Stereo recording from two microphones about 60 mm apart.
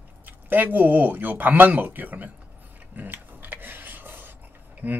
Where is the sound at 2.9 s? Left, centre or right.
Right.